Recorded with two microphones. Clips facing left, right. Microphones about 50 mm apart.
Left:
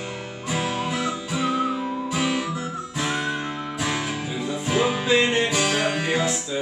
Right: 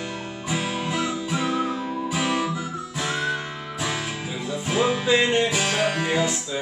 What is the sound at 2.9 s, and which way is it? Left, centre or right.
Music, centre.